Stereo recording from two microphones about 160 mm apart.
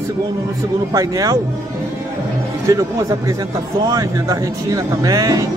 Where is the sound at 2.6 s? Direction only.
20° right (ahead or behind).